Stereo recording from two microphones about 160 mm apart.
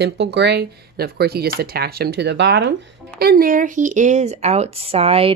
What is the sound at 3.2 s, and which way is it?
Speech, 70° right (ahead or behind).